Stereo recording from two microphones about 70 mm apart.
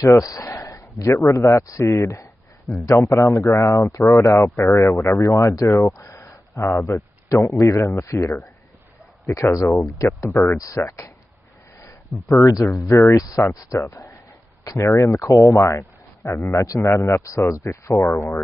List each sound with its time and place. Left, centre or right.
0.0 s a man's voice: left
6.0 s a sound: left
7.6 s a man's voice: left
10.3 s a man's voice: left
10.6 s speech: left
11.8 s a sound: left
12.7 s speech: left
13.7 s a man's voice: left
14.6 s speech: left
15.0 s speech: left